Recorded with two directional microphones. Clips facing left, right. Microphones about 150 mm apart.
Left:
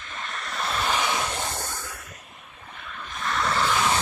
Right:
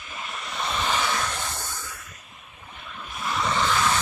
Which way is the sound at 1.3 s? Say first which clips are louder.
Left 2 dB; 25° left (ahead or behind).